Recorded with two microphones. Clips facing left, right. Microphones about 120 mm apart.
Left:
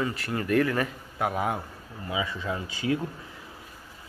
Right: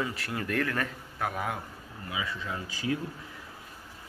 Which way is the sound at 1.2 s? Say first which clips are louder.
Left 5 dB; 25° left (ahead or behind).